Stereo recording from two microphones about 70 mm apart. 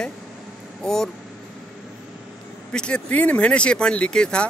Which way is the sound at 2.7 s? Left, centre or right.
Centre.